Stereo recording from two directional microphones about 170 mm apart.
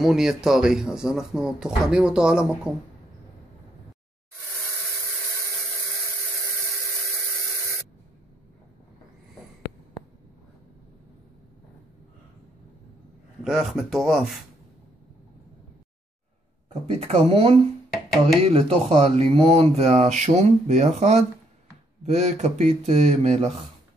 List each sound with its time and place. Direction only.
0.0 s speech: 5° right (ahead or behind)
13.4 s speech: centre (ahead or behind)
16.8 s speech: 40° right (ahead or behind)